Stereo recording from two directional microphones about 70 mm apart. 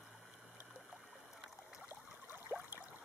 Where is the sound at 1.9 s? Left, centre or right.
Right.